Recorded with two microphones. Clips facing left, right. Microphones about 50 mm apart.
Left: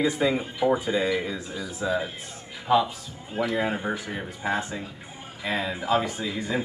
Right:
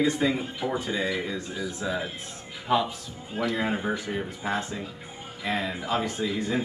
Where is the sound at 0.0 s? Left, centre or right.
Centre.